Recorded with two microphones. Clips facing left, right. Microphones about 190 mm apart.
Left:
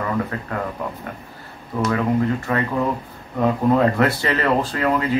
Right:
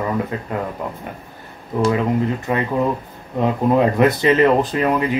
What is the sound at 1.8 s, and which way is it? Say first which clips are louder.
Speech: right 2 dB; 20° right (ahead or behind).